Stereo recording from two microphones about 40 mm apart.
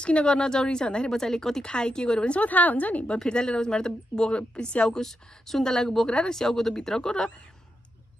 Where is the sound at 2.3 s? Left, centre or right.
Left.